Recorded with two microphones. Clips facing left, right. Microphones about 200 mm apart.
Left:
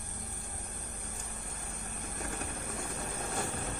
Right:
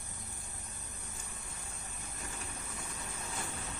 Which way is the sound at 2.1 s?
60° left (ahead or behind).